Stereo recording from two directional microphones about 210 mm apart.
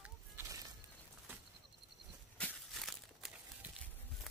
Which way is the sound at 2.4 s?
Centre (ahead or behind).